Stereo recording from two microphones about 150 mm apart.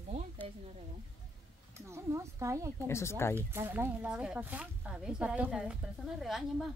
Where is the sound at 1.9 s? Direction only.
20° right (ahead or behind).